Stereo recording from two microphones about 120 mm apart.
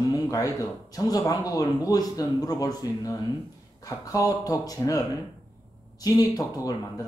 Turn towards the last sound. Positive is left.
turn(degrees=30)  # may be behind; listen again after turning